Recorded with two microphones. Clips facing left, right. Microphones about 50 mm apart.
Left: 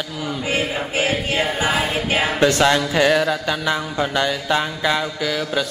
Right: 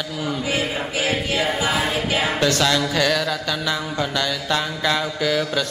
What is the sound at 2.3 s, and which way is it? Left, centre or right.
Mantra, left.